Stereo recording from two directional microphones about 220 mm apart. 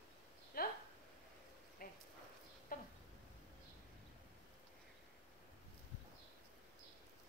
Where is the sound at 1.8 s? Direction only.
40° left (ahead or behind).